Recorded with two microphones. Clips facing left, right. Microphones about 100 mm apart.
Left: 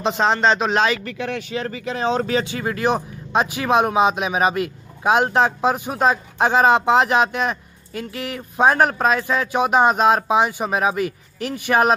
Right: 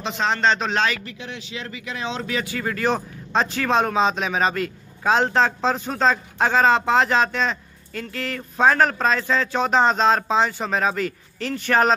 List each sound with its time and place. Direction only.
0.2 s speech: 15° left (ahead or behind)
1.0 s speech: 55° left (ahead or behind); by 2.4 s 40° left (ahead or behind)
2.4 s speech: 20° left (ahead or behind)